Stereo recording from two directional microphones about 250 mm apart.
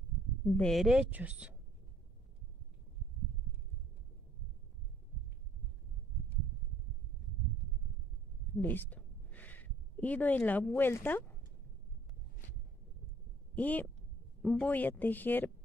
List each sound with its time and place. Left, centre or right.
0.6 s speech: centre
8.5 s a woman's voice: centre
13.6 s speech: centre